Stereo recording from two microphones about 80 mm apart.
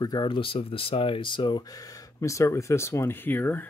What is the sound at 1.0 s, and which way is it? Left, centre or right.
Speech, left.